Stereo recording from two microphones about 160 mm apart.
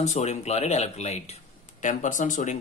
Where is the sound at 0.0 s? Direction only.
45° left (ahead or behind).